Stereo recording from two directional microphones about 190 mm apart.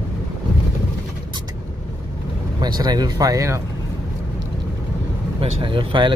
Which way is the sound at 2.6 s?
20° right (ahead or behind).